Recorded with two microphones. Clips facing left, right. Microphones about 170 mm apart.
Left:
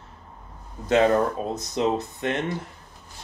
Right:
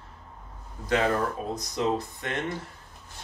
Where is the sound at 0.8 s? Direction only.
25° left (ahead or behind).